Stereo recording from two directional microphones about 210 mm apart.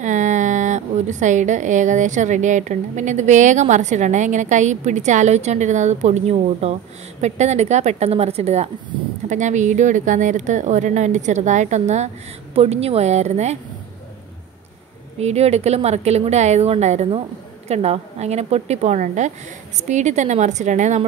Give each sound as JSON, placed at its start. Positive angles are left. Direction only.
{"t": 0.0, "sound": "a woman's voice", "side_deg": -35}
{"t": 15.1, "sound": "a woman's voice", "side_deg": -30}